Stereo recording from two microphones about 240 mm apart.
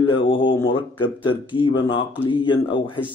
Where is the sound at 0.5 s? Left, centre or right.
Left.